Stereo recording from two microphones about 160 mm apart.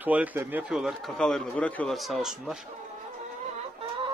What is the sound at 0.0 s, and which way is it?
Speech, 10° right (ahead or behind).